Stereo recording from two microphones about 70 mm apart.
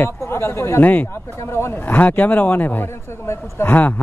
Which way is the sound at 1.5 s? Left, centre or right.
Left.